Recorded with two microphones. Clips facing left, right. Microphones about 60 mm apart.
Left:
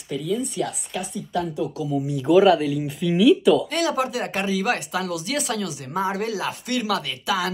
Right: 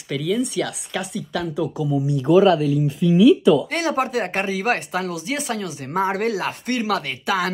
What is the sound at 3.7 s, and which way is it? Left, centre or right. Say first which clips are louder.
Speech: right 1 dB; right.